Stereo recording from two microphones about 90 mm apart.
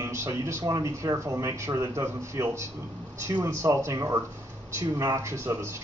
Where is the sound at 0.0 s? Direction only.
30° right (ahead or behind).